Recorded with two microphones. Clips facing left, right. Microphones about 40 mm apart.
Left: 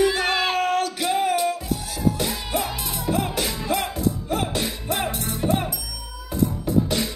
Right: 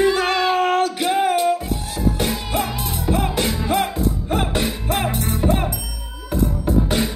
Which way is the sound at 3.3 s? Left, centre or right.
Right.